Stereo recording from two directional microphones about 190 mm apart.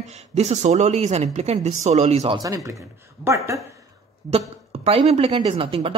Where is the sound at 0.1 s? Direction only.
35° right (ahead or behind).